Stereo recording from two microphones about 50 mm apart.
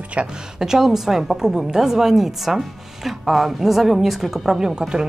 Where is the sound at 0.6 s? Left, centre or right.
Centre.